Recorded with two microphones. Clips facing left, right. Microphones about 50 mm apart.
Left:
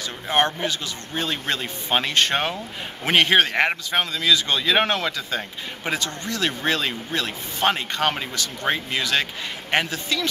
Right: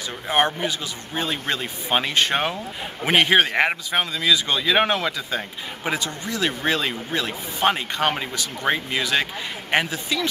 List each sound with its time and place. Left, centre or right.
0.3 s speech: centre
2.1 s speech: centre